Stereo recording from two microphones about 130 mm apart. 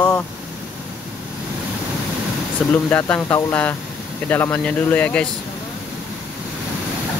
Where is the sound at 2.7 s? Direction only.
10° left (ahead or behind).